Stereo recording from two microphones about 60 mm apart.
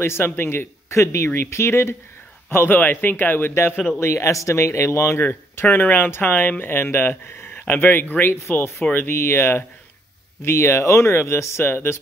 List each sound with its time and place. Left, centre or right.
0.0 s speech: left
2.5 s speech: left
4.0 s speech: left
5.2 s speech: left